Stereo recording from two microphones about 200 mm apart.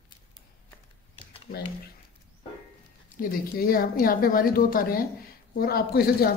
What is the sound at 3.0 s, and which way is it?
A woman's voice, 45° left (ahead or behind).